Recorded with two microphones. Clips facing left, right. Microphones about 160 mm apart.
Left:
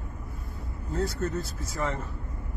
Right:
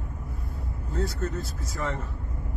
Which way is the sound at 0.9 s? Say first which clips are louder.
Left 1 dB; centre (ahead or behind).